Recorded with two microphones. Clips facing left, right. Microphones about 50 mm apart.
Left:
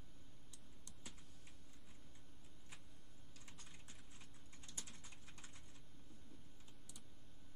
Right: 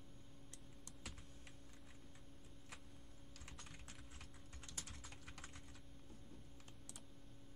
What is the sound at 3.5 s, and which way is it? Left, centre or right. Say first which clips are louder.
Typing: right 4 dB; right.